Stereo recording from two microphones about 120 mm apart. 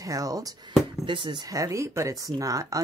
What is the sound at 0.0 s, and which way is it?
Speech, 30° right (ahead or behind).